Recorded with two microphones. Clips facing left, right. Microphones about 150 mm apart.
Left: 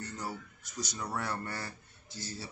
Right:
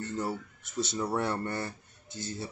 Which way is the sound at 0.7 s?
25° right (ahead or behind).